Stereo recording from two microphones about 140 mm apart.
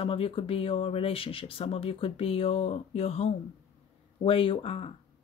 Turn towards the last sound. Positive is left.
turn(degrees=45)  # may be behind; listen again after turning